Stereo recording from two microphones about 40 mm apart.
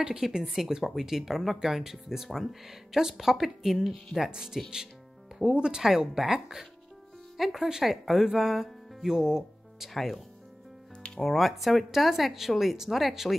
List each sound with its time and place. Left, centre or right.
0.3 s speech: centre
4.2 s speech: centre
9.9 s speech: centre
11.0 s music: left
11.2 s speech: centre